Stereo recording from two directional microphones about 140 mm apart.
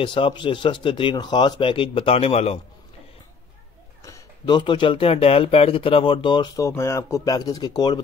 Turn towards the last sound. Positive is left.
turn(degrees=30)  # may be behind; listen again after turning